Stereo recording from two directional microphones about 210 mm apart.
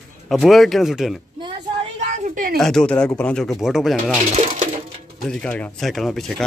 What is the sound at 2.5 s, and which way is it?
Speech, centre (ahead or behind).